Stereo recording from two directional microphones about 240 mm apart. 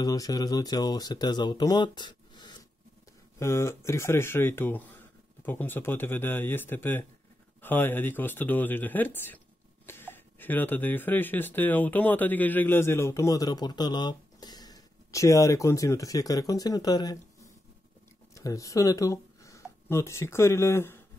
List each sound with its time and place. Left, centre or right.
0.0 s speech: centre